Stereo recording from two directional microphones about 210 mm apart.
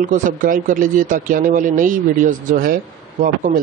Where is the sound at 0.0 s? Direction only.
40° right (ahead or behind).